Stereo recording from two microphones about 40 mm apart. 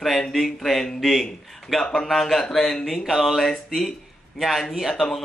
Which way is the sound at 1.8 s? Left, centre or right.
Centre.